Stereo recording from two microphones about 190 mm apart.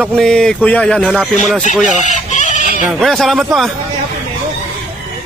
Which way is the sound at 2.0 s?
40° left (ahead or behind).